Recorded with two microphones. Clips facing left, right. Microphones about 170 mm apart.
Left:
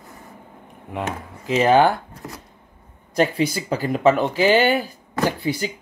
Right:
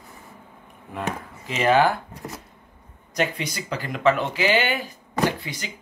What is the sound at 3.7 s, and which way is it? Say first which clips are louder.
Speech: left 2 dB; 45° left (ahead or behind).